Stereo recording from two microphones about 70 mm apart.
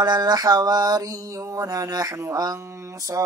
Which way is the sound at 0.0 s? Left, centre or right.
Right.